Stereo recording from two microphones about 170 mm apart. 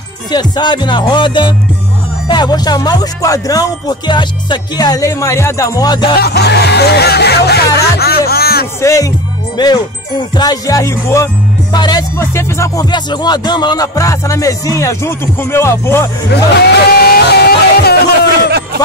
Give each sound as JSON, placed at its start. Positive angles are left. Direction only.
{"t": 0.3, "sound": "music", "side_deg": 25}
{"t": 6.1, "sound": "music", "side_deg": 70}
{"t": 8.8, "sound": "music", "side_deg": 20}
{"t": 14.8, "sound": "speech", "side_deg": 15}
{"t": 16.5, "sound": "a sound", "side_deg": 65}